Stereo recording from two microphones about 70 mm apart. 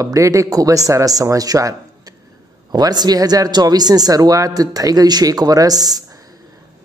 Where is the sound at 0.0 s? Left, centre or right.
Right.